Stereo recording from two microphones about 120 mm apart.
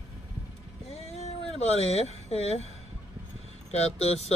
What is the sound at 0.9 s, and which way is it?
Cat, 65° left (ahead or behind).